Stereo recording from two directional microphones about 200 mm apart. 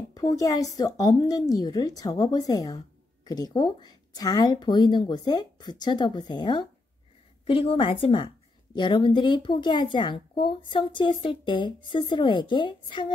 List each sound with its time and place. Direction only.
0.1 s a woman's voice: 20° left (ahead or behind)